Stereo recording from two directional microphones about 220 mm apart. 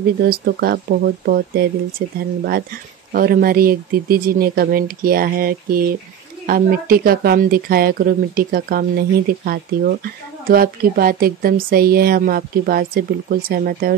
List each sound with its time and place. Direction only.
0.2 s speech: 45° right (ahead or behind)